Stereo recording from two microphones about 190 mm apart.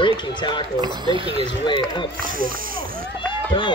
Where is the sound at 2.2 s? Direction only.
45° right (ahead or behind).